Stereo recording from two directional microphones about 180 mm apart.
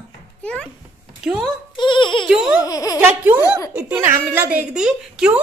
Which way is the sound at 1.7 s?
25° left (ahead or behind).